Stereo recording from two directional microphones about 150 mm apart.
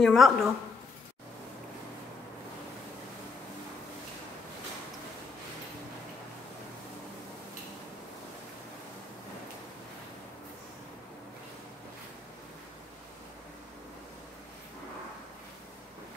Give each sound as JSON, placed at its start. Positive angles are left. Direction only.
{"t": 0.0, "sound": "speech", "side_deg": 0}